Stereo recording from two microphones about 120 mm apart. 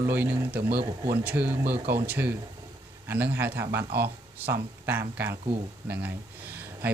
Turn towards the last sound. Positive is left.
turn(degrees=-15)  # may be behind; listen again after turning